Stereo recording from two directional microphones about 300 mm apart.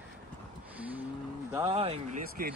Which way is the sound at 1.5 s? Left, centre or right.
Centre.